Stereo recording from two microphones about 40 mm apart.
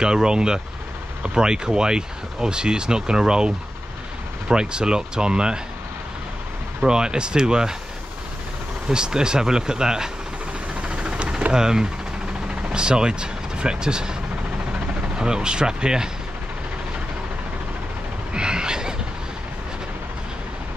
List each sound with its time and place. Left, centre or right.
0.0 s speech: centre
6.8 s speech: centre
8.8 s speech: centre
10.7 s vehicle: right
11.5 s speech: centre
15.1 s speech: centre
18.3 s a sound: right